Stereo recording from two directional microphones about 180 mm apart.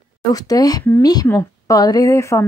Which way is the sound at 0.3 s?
20° left (ahead or behind).